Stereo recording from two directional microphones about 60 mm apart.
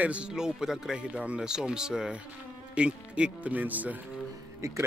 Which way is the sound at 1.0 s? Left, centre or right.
Centre.